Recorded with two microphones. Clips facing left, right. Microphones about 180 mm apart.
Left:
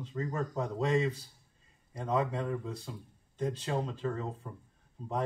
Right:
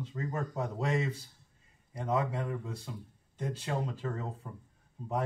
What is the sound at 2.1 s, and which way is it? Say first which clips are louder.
Speech: left 1 dB; 30° left (ahead or behind).